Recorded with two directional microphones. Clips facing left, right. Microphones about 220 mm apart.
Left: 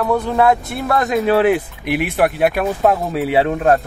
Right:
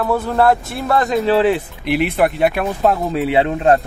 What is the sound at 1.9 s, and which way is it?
Speech, 50° left (ahead or behind).